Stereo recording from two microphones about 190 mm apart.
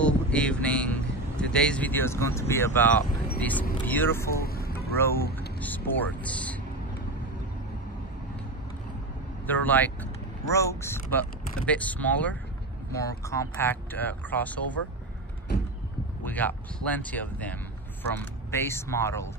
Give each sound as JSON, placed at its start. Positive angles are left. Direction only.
{"t": 0.0, "sound": "vehicle", "side_deg": 5}
{"t": 3.3, "sound": "speech", "side_deg": 10}
{"t": 4.3, "sound": "vehicle", "side_deg": 55}
{"t": 5.1, "sound": "speech", "side_deg": 50}
{"t": 5.6, "sound": "speech", "side_deg": 10}
{"t": 9.5, "sound": "speech", "side_deg": 10}
{"t": 16.3, "sound": "speech", "side_deg": 10}